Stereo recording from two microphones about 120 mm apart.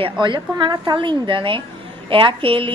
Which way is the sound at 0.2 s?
40° right (ahead or behind).